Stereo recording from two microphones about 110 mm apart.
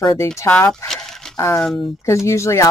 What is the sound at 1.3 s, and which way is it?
Speech, 30° left (ahead or behind).